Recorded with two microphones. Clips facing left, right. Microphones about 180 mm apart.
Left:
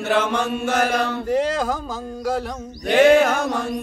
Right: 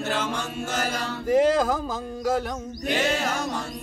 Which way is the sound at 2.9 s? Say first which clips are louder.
Left 11 dB; 60° left (ahead or behind).